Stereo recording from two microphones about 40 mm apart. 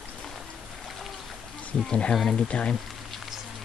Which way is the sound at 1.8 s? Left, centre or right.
Left.